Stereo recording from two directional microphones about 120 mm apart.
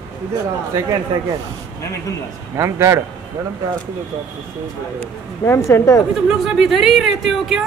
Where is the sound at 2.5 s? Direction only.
25° right (ahead or behind).